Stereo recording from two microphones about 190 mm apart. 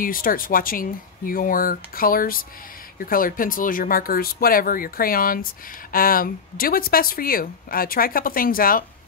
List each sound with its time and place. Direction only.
0.0 s speech: 50° left (ahead or behind)